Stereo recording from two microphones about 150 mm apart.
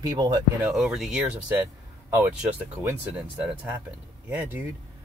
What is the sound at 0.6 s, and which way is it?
Speech, 5° right (ahead or behind).